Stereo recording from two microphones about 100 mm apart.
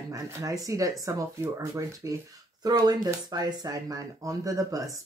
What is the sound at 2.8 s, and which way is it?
Speech, 45° right (ahead or behind).